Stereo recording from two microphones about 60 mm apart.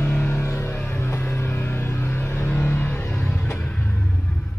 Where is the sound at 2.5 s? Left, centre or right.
Left.